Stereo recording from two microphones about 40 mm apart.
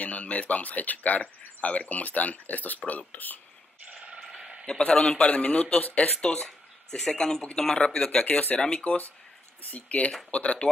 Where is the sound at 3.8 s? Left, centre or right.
Right.